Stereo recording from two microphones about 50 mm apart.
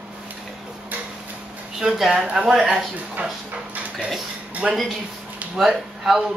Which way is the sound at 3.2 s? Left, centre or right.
Right.